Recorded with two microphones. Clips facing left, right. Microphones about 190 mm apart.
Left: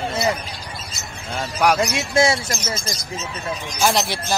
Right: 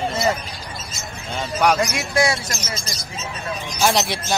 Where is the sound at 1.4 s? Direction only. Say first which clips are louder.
Even; 10° left (ahead or behind).